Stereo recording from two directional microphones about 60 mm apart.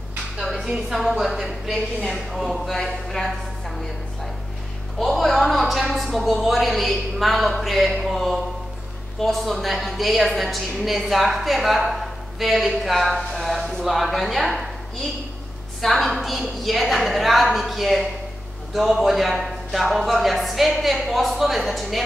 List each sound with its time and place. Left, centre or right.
0.4 s a woman's voice: centre
4.9 s a woman's voice: centre
15.8 s a woman's voice: centre